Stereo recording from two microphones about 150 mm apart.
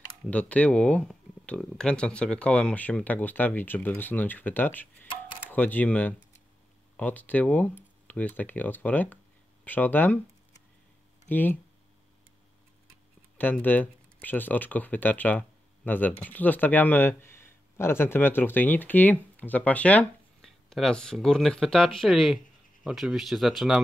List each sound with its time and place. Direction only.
0.3 s speech: 10° left (ahead or behind)
13.4 s speech: 10° left (ahead or behind)